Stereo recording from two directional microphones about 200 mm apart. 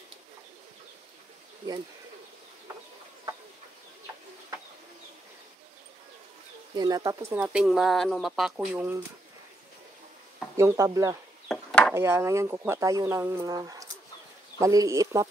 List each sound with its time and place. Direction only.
6.7 s speech: 20° right (ahead or behind)
7.3 s speech: 5° right (ahead or behind)
10.6 s speech: 15° right (ahead or behind)
11.4 s chop: 5° left (ahead or behind)
11.9 s speech: 10° right (ahead or behind)